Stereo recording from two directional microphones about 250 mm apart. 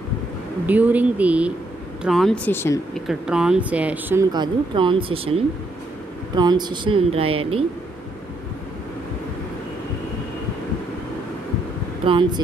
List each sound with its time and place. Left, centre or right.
0.7 s speech: centre
3.1 s speech: centre; by 7.6 s right
12.1 s speech: centre